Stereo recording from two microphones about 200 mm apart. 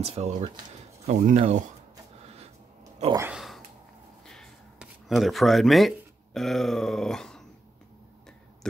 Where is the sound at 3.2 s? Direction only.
5° right (ahead or behind).